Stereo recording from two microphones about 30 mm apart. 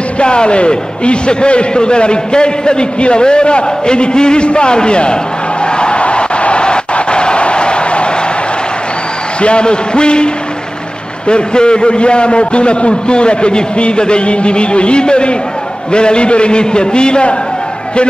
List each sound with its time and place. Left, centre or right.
0.2 s a man's voice: left
9.4 s a man's voice: left